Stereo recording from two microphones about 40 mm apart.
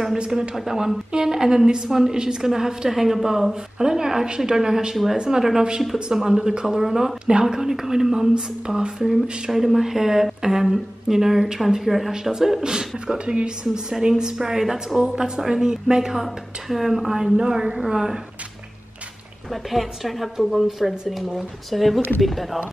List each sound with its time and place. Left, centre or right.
0.2 s a woman's voice: centre
12.1 s a woman's voice: centre
13.8 s a woman's voice: centre
15.0 s a woman's voice: right
17.2 s a woman's voice: centre
19.5 s a woman's voice: centre